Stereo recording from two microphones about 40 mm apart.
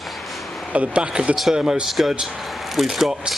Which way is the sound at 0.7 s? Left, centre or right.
Right.